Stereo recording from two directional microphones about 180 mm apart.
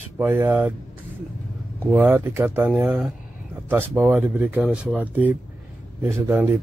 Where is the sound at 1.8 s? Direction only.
5° right (ahead or behind).